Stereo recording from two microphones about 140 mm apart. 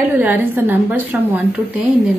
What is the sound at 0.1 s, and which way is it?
A woman's voice, 10° right (ahead or behind).